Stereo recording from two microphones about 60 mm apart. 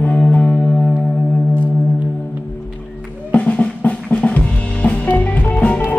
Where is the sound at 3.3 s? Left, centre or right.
Left.